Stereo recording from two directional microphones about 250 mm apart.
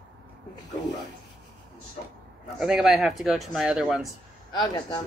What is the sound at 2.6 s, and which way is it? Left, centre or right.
Speech, centre.